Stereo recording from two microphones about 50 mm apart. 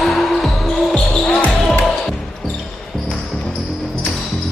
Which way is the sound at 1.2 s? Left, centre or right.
Left.